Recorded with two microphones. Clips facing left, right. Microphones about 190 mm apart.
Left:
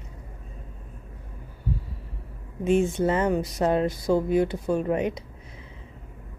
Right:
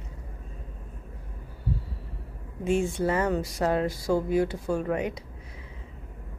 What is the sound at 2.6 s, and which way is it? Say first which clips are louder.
Speech: left 3 dB; 20° left (ahead or behind).